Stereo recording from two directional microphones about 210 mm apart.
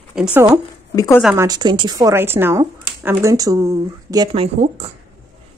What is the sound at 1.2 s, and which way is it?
Speech, 10° right (ahead or behind).